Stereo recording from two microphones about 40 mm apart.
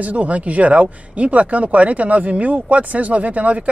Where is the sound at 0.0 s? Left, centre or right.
Right.